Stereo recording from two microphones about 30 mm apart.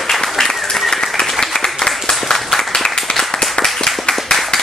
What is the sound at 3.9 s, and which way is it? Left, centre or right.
Clapping, left.